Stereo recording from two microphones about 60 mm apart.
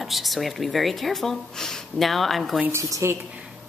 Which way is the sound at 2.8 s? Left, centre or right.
Right.